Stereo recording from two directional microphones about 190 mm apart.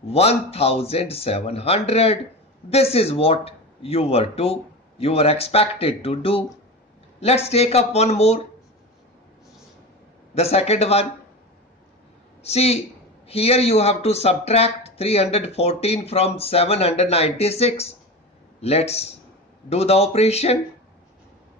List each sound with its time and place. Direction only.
0.1 s speech: 30° left (ahead or behind)
10.3 s speech: 35° left (ahead or behind)
12.4 s speech: 35° left (ahead or behind)